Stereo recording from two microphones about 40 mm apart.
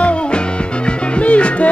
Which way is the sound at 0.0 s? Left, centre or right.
Left.